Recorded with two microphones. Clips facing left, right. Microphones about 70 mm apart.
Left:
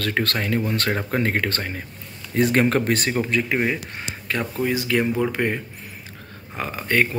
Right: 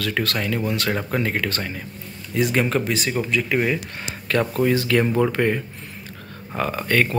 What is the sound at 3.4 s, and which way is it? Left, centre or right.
Speech, left.